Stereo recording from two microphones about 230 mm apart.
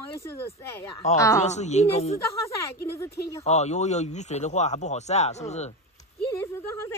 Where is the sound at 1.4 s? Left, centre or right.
Left.